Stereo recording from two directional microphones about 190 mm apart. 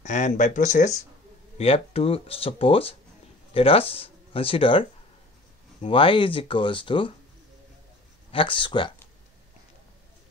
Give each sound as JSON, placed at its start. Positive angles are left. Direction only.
{"t": 0.0, "sound": "speech", "side_deg": 40}
{"t": 8.3, "sound": "speech", "side_deg": 25}